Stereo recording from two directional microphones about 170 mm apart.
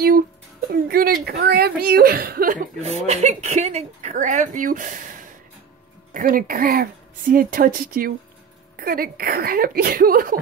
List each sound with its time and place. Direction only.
0.7 s speech: 60° right (ahead or behind)
2.8 s a woman's voice: 40° right (ahead or behind)
6.1 s speech: 55° right (ahead or behind)